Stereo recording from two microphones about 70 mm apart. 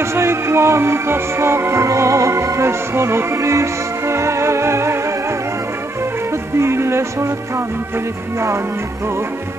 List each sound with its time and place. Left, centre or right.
0.0 s music: right
6.3 s music: right